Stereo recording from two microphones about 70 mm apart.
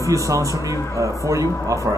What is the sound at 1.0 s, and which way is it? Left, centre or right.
Speech, right.